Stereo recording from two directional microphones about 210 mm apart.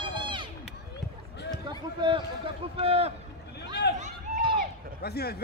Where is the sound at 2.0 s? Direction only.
20° right (ahead or behind).